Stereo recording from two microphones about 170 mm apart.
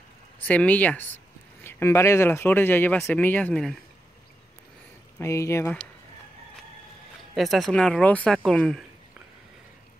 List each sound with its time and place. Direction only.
0.4 s speech: 10° left (ahead or behind)
5.2 s speech: 15° left (ahead or behind)
7.3 s speech: centre (ahead or behind)